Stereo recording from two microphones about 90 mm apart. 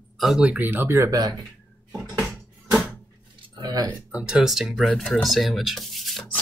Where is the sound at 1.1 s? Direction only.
45° right (ahead or behind).